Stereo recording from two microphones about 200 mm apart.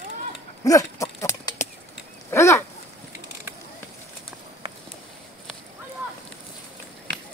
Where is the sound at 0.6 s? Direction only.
15° left (ahead or behind).